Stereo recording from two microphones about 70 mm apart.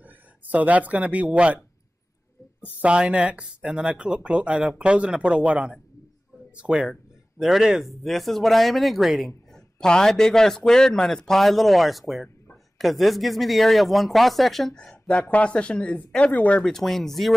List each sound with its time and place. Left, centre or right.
0.0 s speech: right
2.6 s speech: centre
9.5 s speech: centre